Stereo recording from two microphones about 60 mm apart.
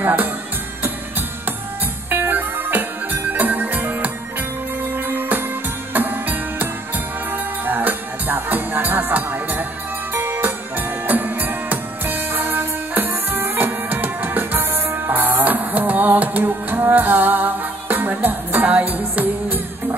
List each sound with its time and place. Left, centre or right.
0.0 s music: right
2.0 s music: right